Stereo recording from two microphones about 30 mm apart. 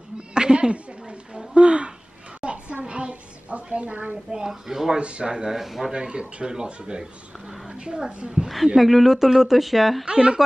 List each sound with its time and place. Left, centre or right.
0.3 s cat: right
1.5 s speech: right
2.4 s a sound: right
4.5 s speech: centre
4.9 s speech: right
5.3 s speech: right
5.6 s speech: centre
5.9 s a woman's voice: right
8.4 s speech: centre
8.7 s speech: centre
10.0 s speech: right